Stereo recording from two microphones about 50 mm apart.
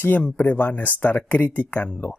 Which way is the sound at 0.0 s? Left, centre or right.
Left.